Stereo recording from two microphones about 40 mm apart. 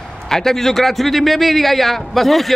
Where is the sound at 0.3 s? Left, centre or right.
Centre.